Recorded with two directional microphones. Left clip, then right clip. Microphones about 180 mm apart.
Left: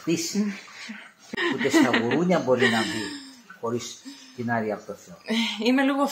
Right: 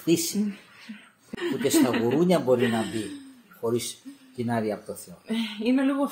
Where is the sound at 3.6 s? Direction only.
25° right (ahead or behind).